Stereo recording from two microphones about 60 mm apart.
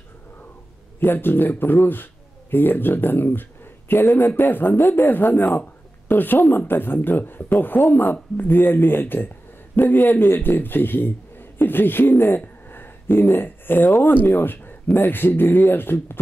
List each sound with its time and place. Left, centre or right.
0.9 s a man's voice: left